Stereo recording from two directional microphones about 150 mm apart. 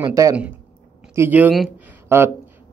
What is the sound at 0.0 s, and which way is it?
Speech, 20° right (ahead or behind).